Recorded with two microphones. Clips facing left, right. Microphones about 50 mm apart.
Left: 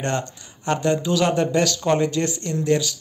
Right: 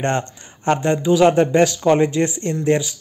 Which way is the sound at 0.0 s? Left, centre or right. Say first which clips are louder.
Right 4 dB; right.